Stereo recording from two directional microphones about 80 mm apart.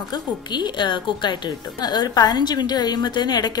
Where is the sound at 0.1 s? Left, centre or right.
Left.